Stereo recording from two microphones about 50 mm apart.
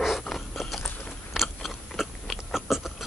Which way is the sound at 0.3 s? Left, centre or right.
Centre.